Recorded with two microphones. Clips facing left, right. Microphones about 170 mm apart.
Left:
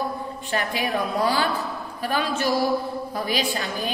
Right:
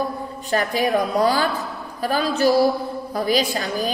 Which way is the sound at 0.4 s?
40° right (ahead or behind).